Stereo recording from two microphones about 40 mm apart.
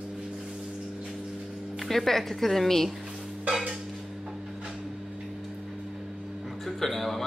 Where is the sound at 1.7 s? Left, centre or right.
Centre.